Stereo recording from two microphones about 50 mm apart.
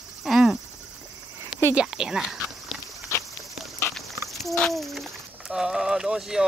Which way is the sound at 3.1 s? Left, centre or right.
Left.